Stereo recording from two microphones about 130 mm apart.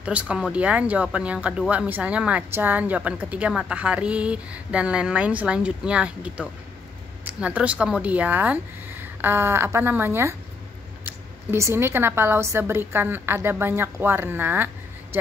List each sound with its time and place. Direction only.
0.0 s speech: 10° right (ahead or behind)